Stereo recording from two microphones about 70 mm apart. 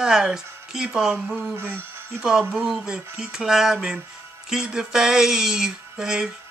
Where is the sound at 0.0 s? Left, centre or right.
Centre.